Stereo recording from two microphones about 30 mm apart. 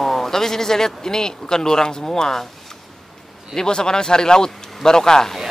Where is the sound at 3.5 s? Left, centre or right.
Left.